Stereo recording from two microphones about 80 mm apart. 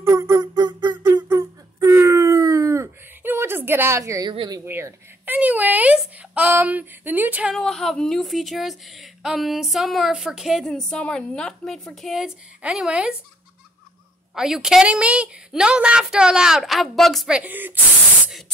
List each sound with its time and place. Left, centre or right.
0.0 s music: right
0.6 s music: right
1.4 s wail: right
3.2 s a sound: right
4.3 s speech: right
4.6 s speech: right
7.5 s speech: centre
10.6 s a woman's voice: centre
14.3 s speech: centre
17.3 s speech: centre